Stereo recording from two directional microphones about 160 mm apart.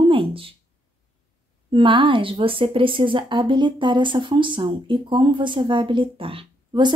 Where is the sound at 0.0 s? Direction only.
35° right (ahead or behind).